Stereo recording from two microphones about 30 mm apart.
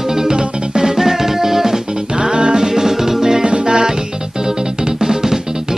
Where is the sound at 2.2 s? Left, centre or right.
Right.